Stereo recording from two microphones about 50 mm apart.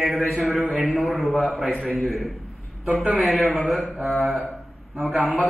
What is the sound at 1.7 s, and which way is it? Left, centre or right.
Speech, centre.